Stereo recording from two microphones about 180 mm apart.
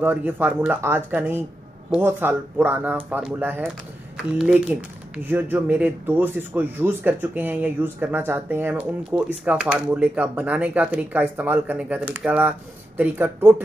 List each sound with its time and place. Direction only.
0.0 s speech: 10° right (ahead or behind)